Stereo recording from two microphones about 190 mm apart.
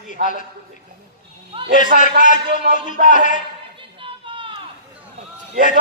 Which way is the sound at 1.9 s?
45° right (ahead or behind).